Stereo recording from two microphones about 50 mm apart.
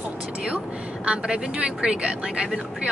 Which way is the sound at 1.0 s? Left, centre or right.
Right.